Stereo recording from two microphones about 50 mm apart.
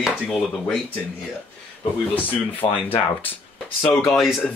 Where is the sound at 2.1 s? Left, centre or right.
Left.